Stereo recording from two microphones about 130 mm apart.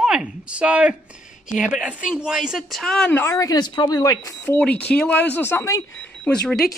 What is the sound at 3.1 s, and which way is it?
Speech, 20° left (ahead or behind).